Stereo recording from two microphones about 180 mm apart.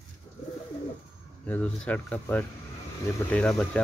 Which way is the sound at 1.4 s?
5° left (ahead or behind).